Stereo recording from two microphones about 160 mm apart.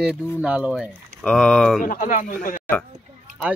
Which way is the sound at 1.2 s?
5° left (ahead or behind).